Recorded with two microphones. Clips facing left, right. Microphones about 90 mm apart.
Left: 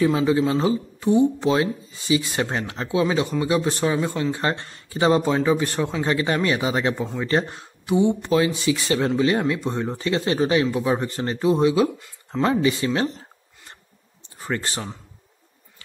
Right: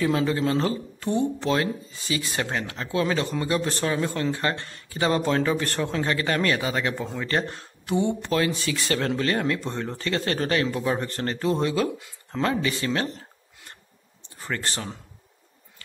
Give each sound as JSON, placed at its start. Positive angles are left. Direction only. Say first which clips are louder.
{"t": 0.0, "sound": "speech", "louder": "left 4 dB", "side_deg": 15}
{"t": 2.9, "sound": "speech", "louder": "left 3 dB", "side_deg": 15}
{"t": 4.4, "sound": "a man's voice", "louder": "left 2 dB", "side_deg": 25}
{"t": 7.8, "sound": "a man's voice", "louder": "left 5 dB", "side_deg": 5}
{"t": 14.5, "sound": "speech", "louder": "left 3 dB", "side_deg": 15}